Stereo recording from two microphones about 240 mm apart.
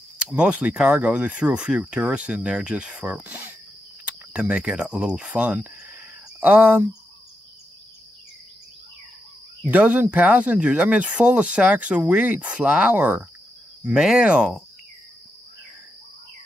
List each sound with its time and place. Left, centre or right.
0.2 s speech: centre
9.7 s speech: centre